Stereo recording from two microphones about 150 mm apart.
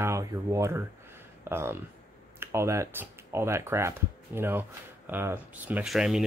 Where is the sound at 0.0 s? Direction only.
20° right (ahead or behind).